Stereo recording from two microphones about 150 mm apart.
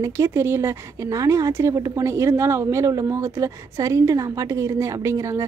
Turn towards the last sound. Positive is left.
turn(degrees=-20)  # may be behind; listen again after turning